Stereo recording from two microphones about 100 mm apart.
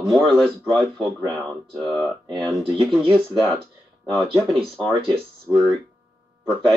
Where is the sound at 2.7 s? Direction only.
60° right (ahead or behind).